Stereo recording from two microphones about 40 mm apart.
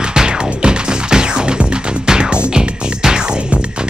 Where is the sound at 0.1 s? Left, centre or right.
Centre.